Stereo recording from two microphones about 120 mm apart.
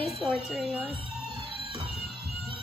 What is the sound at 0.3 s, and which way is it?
Speech, 5° right (ahead or behind).